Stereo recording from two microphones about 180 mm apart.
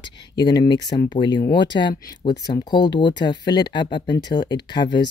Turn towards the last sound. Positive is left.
turn(degrees=25)  # may be behind; listen again after turning